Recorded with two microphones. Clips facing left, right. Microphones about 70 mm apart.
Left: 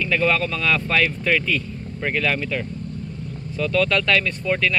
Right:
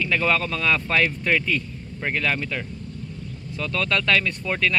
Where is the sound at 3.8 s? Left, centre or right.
Right.